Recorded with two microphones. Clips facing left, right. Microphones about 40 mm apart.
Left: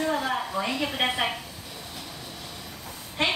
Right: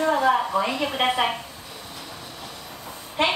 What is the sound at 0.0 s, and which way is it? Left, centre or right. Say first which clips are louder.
A woman's voice: right 7 dB; centre.